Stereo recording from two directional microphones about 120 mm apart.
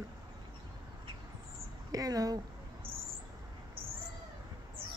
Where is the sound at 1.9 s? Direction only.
30° right (ahead or behind).